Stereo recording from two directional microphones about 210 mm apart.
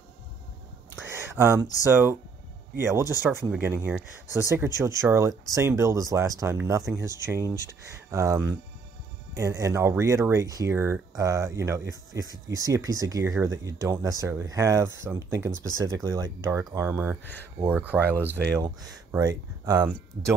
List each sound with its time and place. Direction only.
1.3 s speech: 10° right (ahead or behind)
17.2 s speech: 10° left (ahead or behind)
17.6 s speech: 10° right (ahead or behind)